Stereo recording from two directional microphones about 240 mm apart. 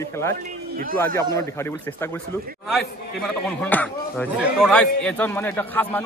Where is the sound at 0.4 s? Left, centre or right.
Right.